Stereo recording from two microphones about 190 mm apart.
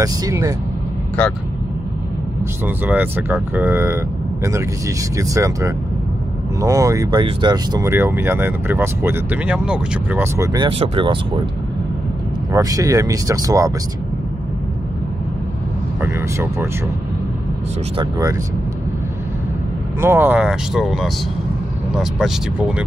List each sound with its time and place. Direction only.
0.0 s speech: 15° right (ahead or behind)
2.6 s speech: 10° right (ahead or behind)
10.7 s speech: 30° right (ahead or behind)
12.5 s speech: 20° right (ahead or behind)
16.0 s speech: 15° right (ahead or behind)
17.9 s speech: 20° right (ahead or behind)
20.0 s speech: 10° right (ahead or behind)